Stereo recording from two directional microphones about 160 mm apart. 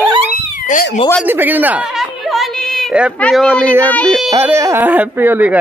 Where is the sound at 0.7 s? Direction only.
65° left (ahead or behind).